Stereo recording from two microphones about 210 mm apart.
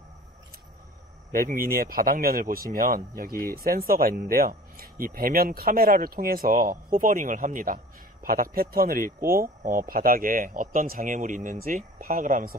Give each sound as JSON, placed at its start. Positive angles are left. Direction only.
{"t": 1.3, "sound": "speech", "side_deg": -40}